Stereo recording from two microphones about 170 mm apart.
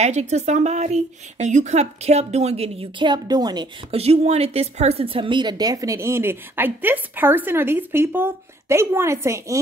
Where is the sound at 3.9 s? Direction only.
35° right (ahead or behind).